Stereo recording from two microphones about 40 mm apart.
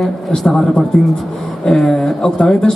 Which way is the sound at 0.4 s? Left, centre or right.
Centre.